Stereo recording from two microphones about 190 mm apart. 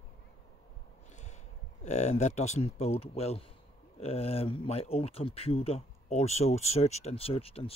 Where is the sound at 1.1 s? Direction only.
35° left (ahead or behind).